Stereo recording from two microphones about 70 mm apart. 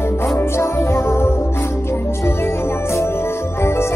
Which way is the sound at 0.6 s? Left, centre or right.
Left.